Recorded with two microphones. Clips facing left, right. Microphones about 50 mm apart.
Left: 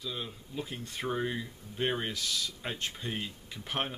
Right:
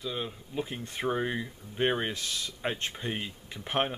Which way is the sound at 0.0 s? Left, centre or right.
Right.